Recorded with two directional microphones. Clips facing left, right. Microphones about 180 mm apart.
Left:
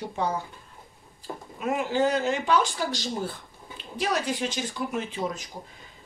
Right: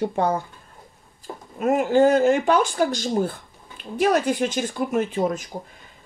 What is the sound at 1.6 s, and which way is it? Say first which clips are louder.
A woman's voice: right 8 dB; 50° right (ahead or behind).